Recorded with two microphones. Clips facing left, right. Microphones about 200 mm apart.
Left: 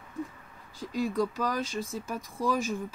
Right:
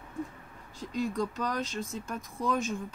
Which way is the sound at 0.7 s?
Centre (ahead or behind).